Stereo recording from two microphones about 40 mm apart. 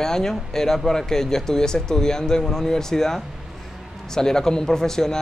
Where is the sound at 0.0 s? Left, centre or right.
Centre.